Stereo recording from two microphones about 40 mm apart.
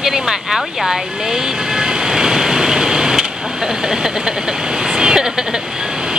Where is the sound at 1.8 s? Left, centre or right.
Centre.